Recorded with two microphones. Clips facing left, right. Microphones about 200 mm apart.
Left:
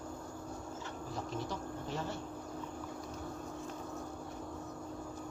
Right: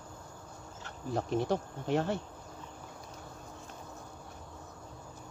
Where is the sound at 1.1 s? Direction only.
65° right (ahead or behind).